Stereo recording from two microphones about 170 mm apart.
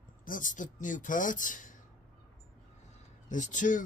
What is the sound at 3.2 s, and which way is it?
Speech, 45° left (ahead or behind).